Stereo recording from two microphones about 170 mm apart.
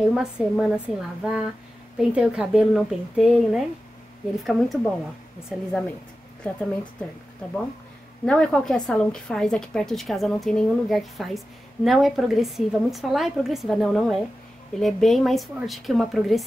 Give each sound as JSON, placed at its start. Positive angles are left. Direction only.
{"t": 0.1, "sound": "a woman's voice", "side_deg": -5}
{"t": 8.3, "sound": "a woman's voice", "side_deg": 5}